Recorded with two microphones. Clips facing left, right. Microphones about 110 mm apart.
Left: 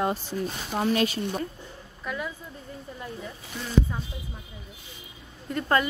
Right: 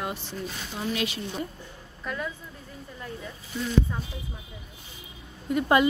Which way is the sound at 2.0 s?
5° left (ahead or behind).